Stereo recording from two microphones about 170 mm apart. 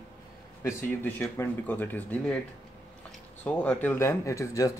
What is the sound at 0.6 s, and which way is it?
Speech, 15° left (ahead or behind).